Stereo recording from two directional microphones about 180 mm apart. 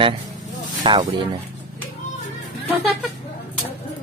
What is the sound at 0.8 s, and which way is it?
Speech, 25° right (ahead or behind).